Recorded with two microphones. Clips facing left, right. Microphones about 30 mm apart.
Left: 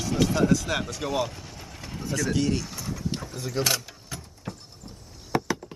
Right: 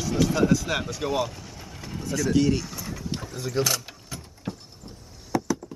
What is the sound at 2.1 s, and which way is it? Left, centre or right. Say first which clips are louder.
Speech: right 3 dB; centre.